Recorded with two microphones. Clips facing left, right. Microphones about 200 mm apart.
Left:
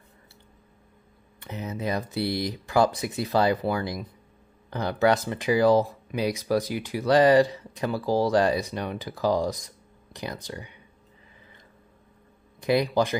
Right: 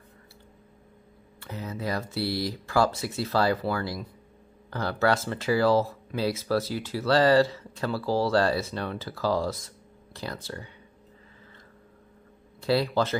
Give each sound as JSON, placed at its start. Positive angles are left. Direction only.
{"t": 1.4, "sound": "speech", "side_deg": 20}
{"t": 12.5, "sound": "speech", "side_deg": 15}